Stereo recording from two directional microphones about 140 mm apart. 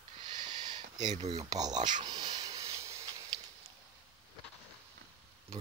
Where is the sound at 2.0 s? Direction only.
30° right (ahead or behind).